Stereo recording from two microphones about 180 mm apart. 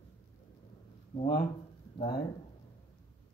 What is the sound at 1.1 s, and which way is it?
Speech, 35° left (ahead or behind).